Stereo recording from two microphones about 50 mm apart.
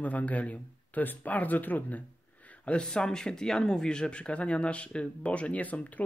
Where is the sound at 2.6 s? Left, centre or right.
Centre.